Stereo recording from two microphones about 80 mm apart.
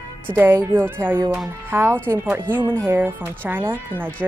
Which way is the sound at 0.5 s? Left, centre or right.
Right.